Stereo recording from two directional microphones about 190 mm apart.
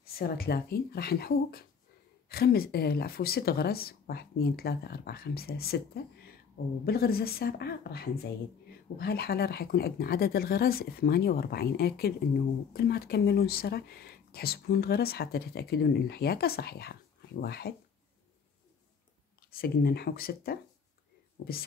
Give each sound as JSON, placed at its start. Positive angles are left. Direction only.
{"t": 0.0, "sound": "speech", "side_deg": 50}
{"t": 19.5, "sound": "speech", "side_deg": 55}